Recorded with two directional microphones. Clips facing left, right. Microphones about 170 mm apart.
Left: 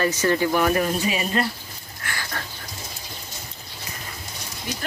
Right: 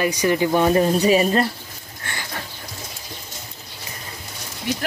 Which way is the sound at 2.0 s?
25° right (ahead or behind).